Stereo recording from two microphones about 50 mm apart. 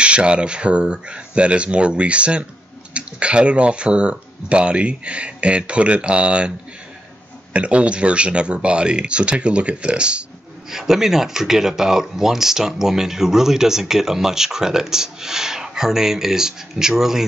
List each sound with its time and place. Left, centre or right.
0.0 s speech: right
7.5 s speech: right
10.7 s speech: centre